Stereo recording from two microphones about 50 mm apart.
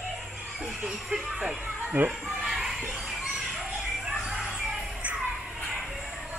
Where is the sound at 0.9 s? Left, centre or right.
Centre.